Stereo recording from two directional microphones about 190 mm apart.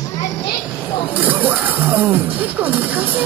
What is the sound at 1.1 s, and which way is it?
Speech, 10° right (ahead or behind).